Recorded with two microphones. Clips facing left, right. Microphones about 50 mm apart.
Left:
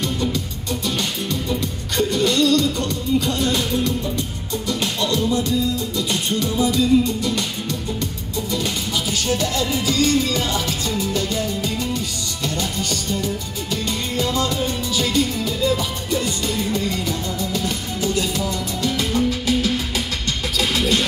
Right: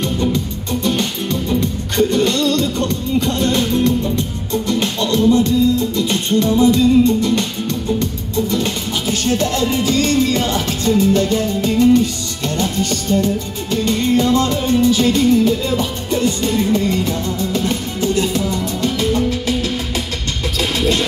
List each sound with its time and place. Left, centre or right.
0.8 s music: right